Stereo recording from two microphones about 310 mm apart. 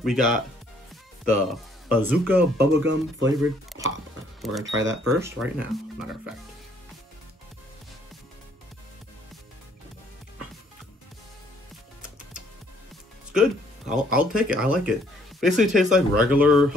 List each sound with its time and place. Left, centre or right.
0.0 s speech: centre
2.5 s speech: right
4.7 s speech: right
5.2 s speech: centre
13.3 s speech: centre